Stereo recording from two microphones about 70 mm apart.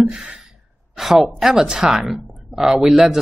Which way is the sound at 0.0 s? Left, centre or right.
Centre.